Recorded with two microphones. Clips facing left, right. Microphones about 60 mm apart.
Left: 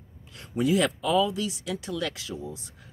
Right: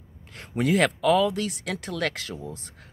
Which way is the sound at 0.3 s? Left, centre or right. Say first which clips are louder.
Right 1 dB; right.